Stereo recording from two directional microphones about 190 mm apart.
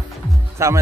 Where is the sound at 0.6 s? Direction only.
15° right (ahead or behind).